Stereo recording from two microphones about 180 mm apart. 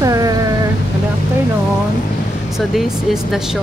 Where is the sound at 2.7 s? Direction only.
Centre (ahead or behind).